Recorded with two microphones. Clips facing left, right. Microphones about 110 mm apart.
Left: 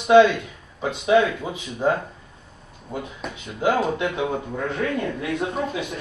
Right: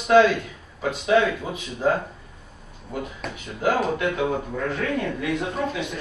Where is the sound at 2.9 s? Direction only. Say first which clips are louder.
Even; 25° left (ahead or behind).